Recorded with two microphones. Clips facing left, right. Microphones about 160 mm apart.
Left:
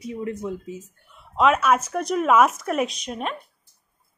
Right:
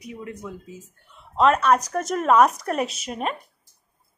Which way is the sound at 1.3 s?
5° left (ahead or behind).